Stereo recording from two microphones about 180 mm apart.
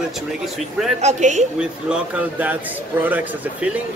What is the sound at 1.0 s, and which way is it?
Speech, 40° right (ahead or behind).